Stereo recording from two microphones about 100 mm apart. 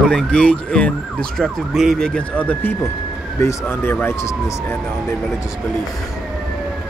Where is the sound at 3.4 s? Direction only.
25° left (ahead or behind).